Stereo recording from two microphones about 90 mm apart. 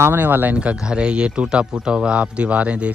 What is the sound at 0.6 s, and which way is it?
A man's voice, 10° right (ahead or behind).